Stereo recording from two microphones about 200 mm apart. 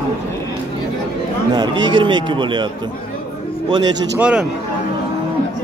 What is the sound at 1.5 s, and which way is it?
Speech, 20° right (ahead or behind).